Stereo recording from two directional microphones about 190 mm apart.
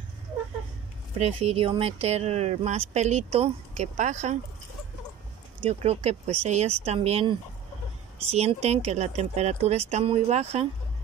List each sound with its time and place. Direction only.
1.1 s speech: 35° right (ahead or behind)
5.6 s speech: 30° right (ahead or behind)